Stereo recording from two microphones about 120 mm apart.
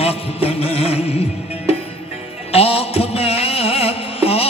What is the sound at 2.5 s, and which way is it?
Music, 55° left (ahead or behind).